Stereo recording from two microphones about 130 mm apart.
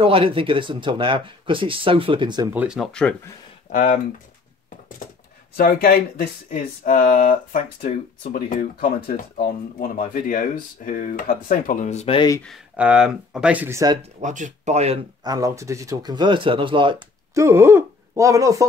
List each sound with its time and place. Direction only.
0.0 s speech: 45° right (ahead or behind)
2.4 s speech: 10° right (ahead or behind)
2.8 s speech: 5° left (ahead or behind)
3.7 s speech: 90° left
5.7 s speech: 90° left; by 12.2 s 60° left (ahead or behind)
12.7 s speech: 10° right (ahead or behind)
14.2 s speech: 70° right (ahead or behind)
15.2 s speech: 25° right (ahead or behind)
17.3 s speech: 20° right (ahead or behind)